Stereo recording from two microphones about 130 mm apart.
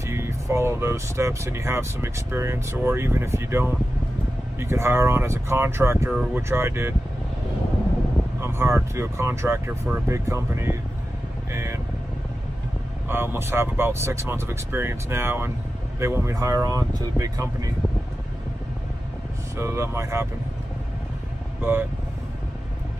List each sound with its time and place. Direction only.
0.0 s speech: 20° right (ahead or behind)
8.4 s speech: 20° right (ahead or behind)
13.1 s speech: 15° right (ahead or behind)
19.5 s speech: 20° right (ahead or behind)
21.5 s speech: 15° right (ahead or behind)